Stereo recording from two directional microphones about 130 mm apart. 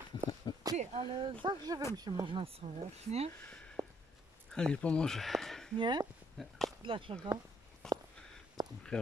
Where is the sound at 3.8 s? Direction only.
20° right (ahead or behind).